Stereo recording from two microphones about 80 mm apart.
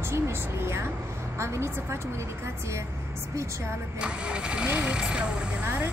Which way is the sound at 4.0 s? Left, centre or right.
Centre.